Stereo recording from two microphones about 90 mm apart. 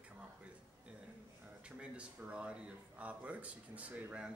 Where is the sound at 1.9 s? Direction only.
10° right (ahead or behind).